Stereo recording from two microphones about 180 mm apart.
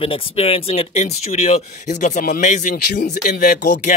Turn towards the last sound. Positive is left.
turn(degrees=45)  # may be behind; listen again after turning